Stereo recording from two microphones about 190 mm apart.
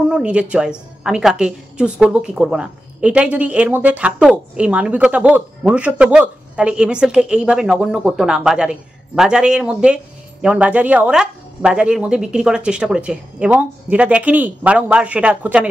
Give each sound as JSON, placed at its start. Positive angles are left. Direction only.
{"t": 0.1, "sound": "a woman's voice", "side_deg": -5}